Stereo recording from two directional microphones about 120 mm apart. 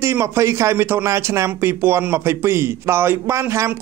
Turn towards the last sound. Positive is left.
turn(degrees=-25)  # may be behind; listen again after turning